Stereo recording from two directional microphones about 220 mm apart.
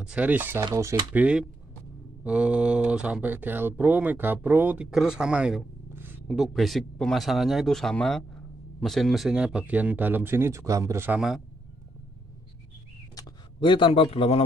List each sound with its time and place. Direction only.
0.0 s speech: 5° right (ahead or behind)
13.1 s speech: 20° left (ahead or behind)